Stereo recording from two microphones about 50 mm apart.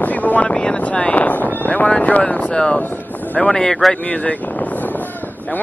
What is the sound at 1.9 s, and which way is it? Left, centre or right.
Vehicle, left.